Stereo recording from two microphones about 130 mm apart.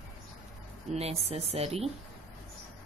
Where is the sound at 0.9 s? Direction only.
55° right (ahead or behind).